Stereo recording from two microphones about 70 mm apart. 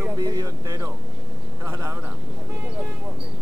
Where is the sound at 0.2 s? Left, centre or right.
Right.